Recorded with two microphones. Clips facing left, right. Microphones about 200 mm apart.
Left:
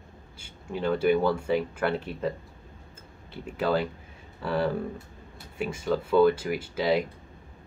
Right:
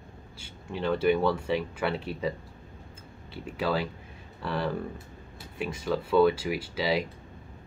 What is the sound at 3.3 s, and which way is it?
Speech, 5° right (ahead or behind).